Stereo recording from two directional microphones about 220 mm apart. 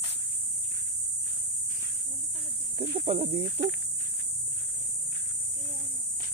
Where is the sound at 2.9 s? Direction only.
25° right (ahead or behind).